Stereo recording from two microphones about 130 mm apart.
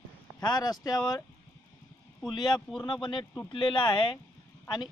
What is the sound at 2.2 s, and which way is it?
Speech, 35° left (ahead or behind).